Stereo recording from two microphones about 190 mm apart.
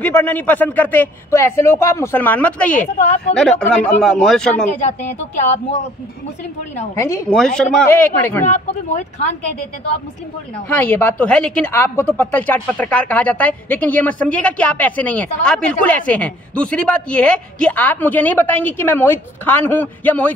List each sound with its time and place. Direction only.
0.0 s speech: 10° left (ahead or behind)
2.8 s speech: 40° left (ahead or behind)
3.3 s speech: 5° left (ahead or behind)
7.0 s speech: 15° left (ahead or behind)
7.3 s speech: 5° left (ahead or behind)
8.5 s speech: 35° left (ahead or behind)
10.7 s speech: 10° left (ahead or behind)